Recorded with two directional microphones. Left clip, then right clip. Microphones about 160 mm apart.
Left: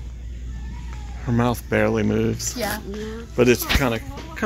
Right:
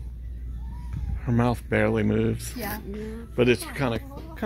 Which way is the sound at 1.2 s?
10° right (ahead or behind).